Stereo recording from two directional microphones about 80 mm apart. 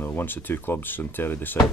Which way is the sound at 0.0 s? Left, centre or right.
Left.